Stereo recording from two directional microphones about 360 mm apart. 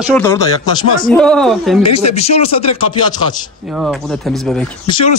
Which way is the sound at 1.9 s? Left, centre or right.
Centre.